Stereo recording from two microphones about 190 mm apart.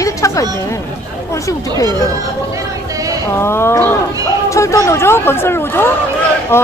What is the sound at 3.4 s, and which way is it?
Speech, 15° left (ahead or behind).